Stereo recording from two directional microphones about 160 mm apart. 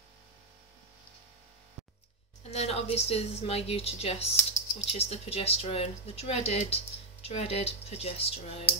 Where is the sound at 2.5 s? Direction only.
40° left (ahead or behind).